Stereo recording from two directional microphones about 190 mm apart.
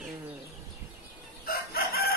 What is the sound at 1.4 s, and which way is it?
Chicken, 55° left (ahead or behind).